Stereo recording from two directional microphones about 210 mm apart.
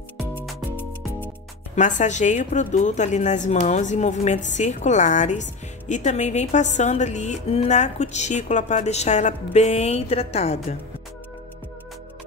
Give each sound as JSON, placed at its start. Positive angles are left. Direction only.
{"t": 0.4, "sound": "music", "side_deg": 0}
{"t": 1.8, "sound": "a woman's voice", "side_deg": 35}